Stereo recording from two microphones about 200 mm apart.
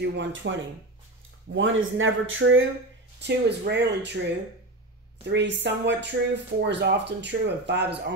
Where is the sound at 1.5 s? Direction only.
75° right (ahead or behind).